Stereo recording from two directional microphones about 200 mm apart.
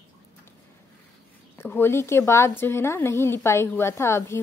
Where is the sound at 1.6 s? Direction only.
10° left (ahead or behind).